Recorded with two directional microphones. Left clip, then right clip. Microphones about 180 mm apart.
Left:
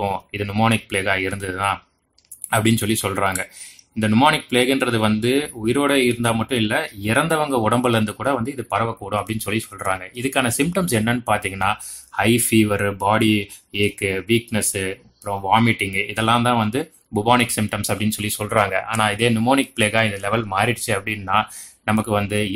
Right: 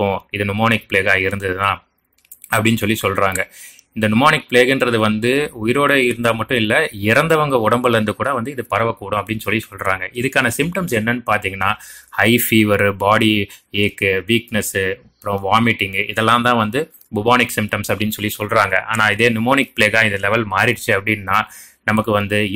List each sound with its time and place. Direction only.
0.0 s speech: 15° right (ahead or behind)